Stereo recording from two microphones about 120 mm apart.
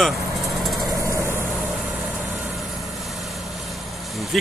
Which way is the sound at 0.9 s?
25° right (ahead or behind).